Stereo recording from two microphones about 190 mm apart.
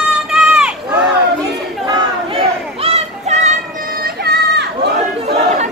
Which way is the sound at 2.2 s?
30° right (ahead or behind).